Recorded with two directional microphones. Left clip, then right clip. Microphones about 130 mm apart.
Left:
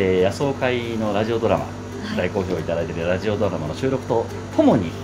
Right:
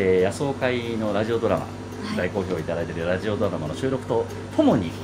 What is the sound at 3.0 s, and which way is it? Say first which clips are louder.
Speech: left 2 dB; centre (ahead or behind).